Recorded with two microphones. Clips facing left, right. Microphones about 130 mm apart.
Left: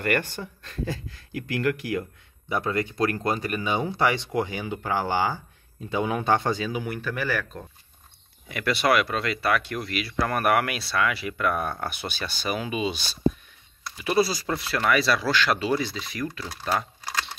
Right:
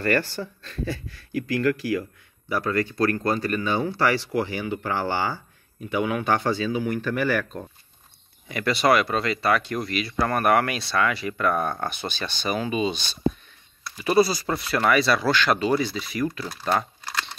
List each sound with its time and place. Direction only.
0.0 s speech: 15° left (ahead or behind)
7.0 s speech: centre (ahead or behind)